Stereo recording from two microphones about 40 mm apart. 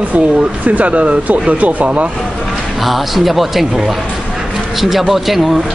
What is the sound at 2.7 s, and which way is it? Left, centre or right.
A man's voice, centre.